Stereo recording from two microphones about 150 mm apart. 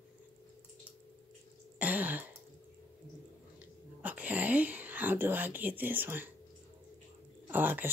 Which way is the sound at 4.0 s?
10° right (ahead or behind).